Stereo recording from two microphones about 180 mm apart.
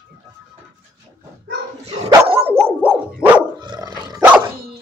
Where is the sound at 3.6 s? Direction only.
25° right (ahead or behind).